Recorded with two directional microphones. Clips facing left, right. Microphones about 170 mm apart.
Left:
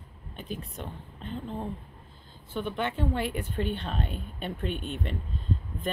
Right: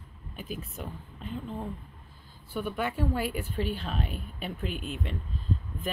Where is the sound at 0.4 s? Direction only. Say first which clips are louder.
Left 1 dB; 5° right (ahead or behind).